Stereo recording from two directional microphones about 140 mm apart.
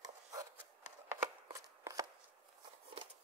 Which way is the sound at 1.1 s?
25° right (ahead or behind).